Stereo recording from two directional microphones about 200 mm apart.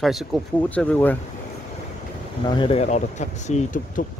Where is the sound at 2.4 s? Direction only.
25° left (ahead or behind).